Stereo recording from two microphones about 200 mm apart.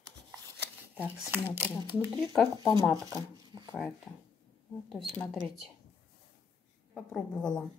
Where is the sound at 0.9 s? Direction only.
10° right (ahead or behind).